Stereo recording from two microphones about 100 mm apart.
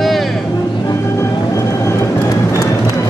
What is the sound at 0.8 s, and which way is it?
Vehicle, 30° left (ahead or behind).